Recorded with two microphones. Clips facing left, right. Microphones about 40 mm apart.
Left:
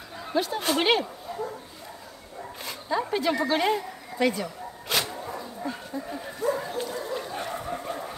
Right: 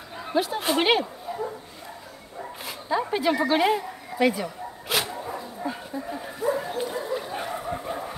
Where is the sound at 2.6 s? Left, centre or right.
Centre.